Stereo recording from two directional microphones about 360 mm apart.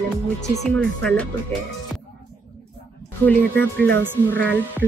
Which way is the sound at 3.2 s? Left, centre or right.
Centre.